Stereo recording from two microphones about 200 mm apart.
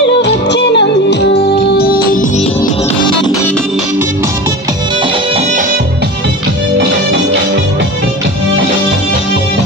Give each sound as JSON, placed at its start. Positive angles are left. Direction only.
{"t": 0.2, "sound": "music", "side_deg": 60}
{"t": 1.8, "sound": "music", "side_deg": 50}